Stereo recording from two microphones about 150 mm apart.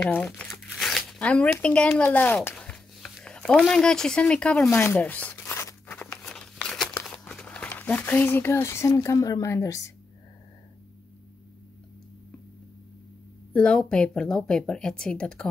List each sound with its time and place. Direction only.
0.0 s speech: 5° left (ahead or behind)
4.6 s tearing: 15° left (ahead or behind)
7.2 s speech: 5° left (ahead or behind)
13.5 s speech: 5° left (ahead or behind)